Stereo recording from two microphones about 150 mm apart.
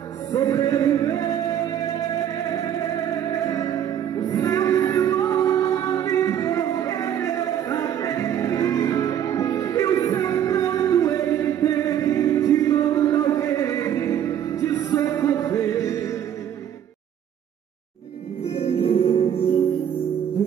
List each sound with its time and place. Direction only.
0.3 s music: 25° left (ahead or behind)
18.4 s music: 40° left (ahead or behind)